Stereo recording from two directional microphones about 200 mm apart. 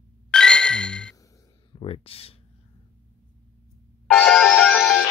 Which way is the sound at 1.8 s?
30° left (ahead or behind).